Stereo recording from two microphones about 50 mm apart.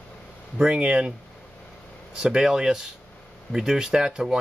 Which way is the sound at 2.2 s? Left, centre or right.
Centre.